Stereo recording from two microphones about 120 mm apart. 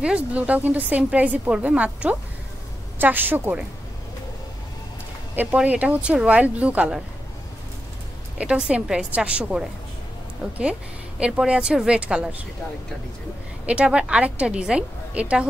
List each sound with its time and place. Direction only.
0.0 s a woman's voice: 10° right (ahead or behind)
5.3 s a woman's voice: 15° right (ahead or behind)
8.4 s a woman's voice: 10° right (ahead or behind)
13.7 s a woman's voice: 10° right (ahead or behind)